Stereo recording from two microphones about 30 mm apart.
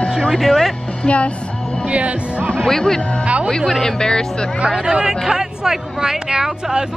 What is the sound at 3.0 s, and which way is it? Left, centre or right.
Speech, left.